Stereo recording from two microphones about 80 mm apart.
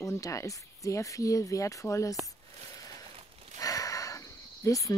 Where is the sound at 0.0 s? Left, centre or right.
Left.